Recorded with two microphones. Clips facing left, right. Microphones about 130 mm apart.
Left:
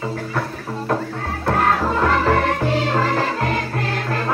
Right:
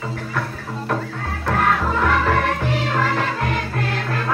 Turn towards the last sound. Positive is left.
turn(degrees=35)  # may be behind; listen again after turning